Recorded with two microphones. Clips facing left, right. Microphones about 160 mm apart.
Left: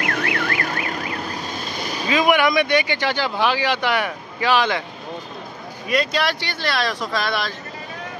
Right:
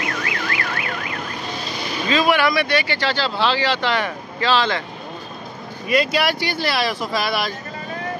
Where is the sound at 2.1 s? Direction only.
15° left (ahead or behind).